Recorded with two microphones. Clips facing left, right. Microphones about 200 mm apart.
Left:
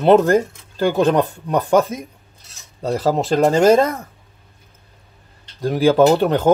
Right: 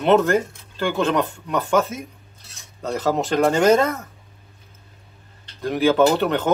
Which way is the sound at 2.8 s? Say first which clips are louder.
Left 3 dB; 35° left (ahead or behind).